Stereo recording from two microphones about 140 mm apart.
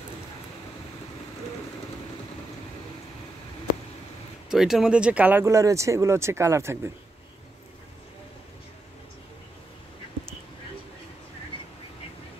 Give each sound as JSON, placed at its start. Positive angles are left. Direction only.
{"t": 4.5, "sound": "speech", "side_deg": -5}